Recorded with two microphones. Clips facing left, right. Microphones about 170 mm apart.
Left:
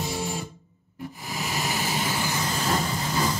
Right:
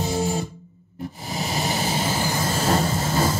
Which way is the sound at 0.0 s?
30° right (ahead or behind).